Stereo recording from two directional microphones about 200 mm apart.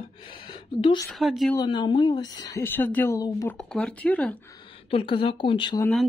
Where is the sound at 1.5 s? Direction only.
20° left (ahead or behind).